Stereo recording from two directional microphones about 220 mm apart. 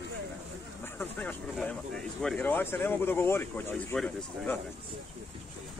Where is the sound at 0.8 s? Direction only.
10° left (ahead or behind).